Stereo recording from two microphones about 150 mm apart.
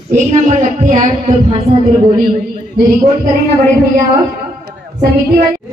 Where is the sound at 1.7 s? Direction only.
90° right.